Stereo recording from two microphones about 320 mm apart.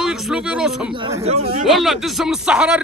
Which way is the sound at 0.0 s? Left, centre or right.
Centre.